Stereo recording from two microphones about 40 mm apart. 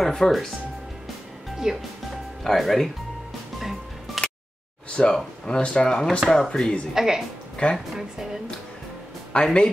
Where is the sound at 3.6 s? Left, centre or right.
Centre.